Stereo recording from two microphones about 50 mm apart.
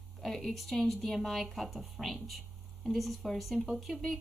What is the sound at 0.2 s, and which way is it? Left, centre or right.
Speech, centre.